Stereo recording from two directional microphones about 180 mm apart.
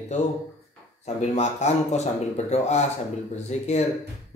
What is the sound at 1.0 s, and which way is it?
Speech, 40° left (ahead or behind).